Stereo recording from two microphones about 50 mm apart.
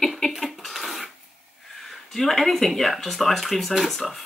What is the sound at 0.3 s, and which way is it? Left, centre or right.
Dishes, centre.